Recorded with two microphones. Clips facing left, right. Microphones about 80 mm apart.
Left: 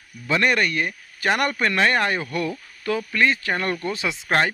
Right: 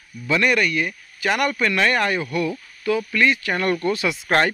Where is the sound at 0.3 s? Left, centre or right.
Left.